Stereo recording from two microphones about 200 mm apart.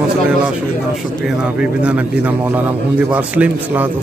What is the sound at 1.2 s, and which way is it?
A man's voice, 5° right (ahead or behind).